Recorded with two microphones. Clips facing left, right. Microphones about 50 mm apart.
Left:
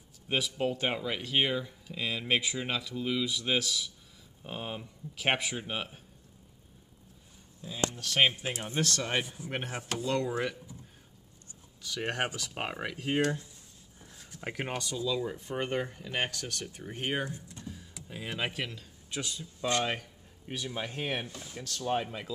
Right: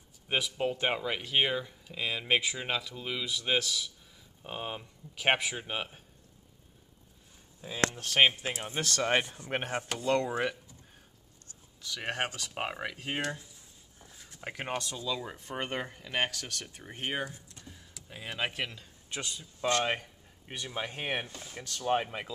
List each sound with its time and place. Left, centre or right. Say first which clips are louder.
0.3 s speech: even; centre
7.9 s speech: even; right
8.5 s speech: left 2 dB; centre
8.9 s speech: right 4 dB; right
11.8 s speech: left 1 dB; centre
13.9 s a sound: left 1 dB; centre
14.4 s speech: even; centre
15.5 s speech: left 2 dB; right; by 17.0 s centre
17.0 s speech: left 1 dB; centre; by 22.3 s right